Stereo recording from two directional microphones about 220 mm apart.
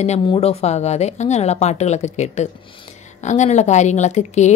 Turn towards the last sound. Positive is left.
turn(degrees=30)  # may be behind; listen again after turning